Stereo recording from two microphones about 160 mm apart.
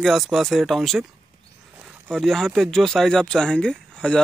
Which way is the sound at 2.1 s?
Centre (ahead or behind).